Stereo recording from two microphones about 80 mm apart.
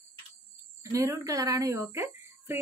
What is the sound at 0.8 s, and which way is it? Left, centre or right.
Speech, right.